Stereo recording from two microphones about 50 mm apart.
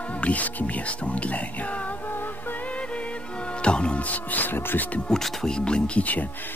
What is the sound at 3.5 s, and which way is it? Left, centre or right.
Speech, left.